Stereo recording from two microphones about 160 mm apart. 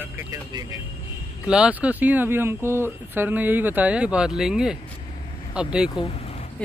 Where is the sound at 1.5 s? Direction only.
5° right (ahead or behind).